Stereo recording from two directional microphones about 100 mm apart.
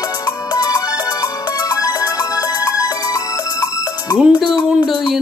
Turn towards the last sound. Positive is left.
turn(degrees=0)  # may be behind; listen again after turning